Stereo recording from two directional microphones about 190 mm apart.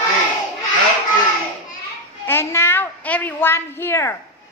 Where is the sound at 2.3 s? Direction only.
15° left (ahead or behind).